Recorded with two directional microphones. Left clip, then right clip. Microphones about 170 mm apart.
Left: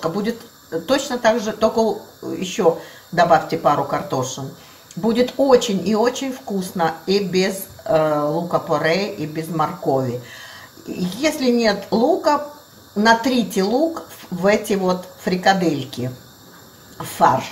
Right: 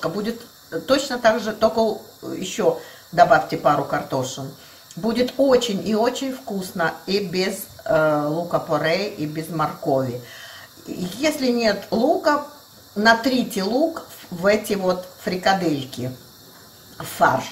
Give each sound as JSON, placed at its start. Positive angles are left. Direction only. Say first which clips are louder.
{"t": 0.0, "sound": "speech", "louder": "left 3 dB", "side_deg": 0}